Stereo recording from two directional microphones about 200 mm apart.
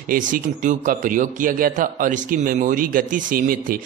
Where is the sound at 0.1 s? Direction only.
40° right (ahead or behind).